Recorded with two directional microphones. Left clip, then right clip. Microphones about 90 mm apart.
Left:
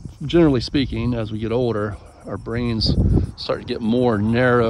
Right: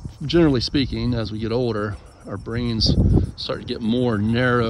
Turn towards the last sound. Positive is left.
turn(degrees=40)  # may be behind; listen again after turning